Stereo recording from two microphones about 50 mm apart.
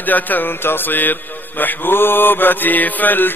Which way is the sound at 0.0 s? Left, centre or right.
Left.